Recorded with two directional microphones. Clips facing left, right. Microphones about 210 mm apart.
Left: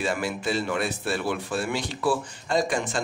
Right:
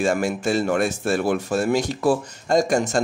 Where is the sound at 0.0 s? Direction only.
45° right (ahead or behind).